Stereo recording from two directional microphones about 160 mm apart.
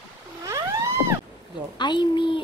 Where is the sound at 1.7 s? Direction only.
30° left (ahead or behind).